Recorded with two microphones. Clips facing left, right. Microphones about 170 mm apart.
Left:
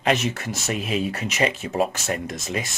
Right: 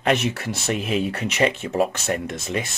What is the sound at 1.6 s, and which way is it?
Speech, 45° right (ahead or behind).